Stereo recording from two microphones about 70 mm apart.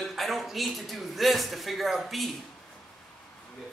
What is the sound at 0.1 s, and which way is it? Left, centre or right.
A man's voice, centre.